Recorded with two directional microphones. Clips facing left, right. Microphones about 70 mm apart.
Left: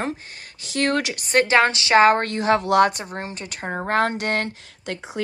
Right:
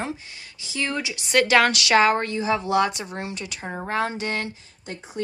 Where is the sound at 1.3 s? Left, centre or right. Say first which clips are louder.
Left 1 dB; left.